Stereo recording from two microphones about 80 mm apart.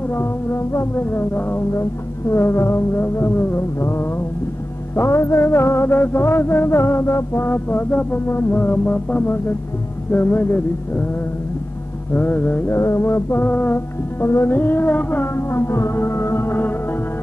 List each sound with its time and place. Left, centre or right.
0.1 s music: left
4.9 s music: left
12.1 s music: left
12.7 s music: left
14.2 s music: left